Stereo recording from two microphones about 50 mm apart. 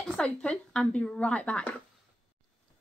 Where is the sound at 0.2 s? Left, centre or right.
Centre.